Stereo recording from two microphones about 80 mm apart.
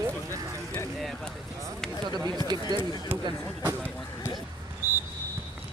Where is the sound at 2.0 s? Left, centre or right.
Right.